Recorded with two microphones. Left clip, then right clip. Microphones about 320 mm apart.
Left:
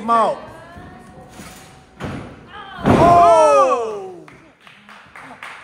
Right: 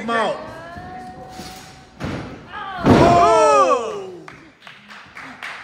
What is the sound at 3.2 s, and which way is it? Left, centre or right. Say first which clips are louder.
Slam: left 2 dB; centre.